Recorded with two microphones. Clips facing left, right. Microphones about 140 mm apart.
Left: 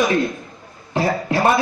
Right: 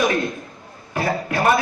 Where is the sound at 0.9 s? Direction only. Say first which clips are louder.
Left 3 dB; 25° left (ahead or behind).